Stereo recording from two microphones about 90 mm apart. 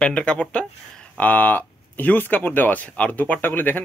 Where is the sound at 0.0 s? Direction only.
15° left (ahead or behind).